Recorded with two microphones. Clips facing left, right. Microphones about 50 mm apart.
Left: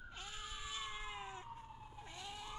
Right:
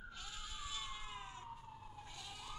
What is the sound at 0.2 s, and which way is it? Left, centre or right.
Cat, left.